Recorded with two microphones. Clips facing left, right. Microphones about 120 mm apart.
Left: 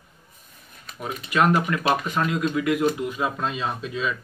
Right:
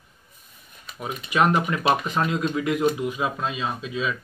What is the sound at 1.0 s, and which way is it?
Speech, 15° right (ahead or behind).